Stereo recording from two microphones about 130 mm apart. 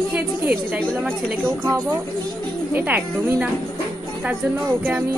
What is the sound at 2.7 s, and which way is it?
Speech, 15° right (ahead or behind).